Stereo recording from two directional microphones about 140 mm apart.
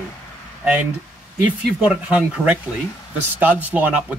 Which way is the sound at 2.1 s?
10° right (ahead or behind).